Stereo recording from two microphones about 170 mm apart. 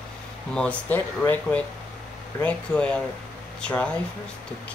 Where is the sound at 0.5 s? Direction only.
5° left (ahead or behind).